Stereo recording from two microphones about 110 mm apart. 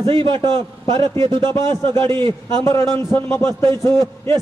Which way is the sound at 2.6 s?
25° left (ahead or behind).